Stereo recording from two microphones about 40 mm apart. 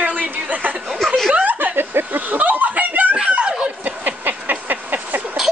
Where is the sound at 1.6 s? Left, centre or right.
Right.